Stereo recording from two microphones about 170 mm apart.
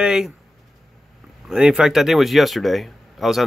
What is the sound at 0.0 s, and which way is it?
Speech, 5° right (ahead or behind).